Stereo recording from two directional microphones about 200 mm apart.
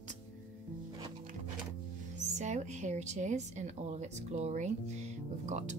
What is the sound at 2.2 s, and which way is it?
Speech, 35° right (ahead or behind).